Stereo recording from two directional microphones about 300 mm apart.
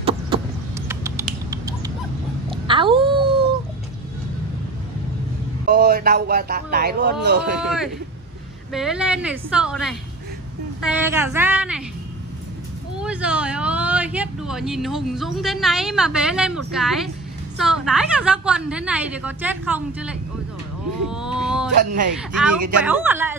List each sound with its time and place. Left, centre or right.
0.8 s typing: centre
2.6 s a sound: centre
5.7 s a man's voice: right
7.6 s speech: centre
13.0 s speech: centre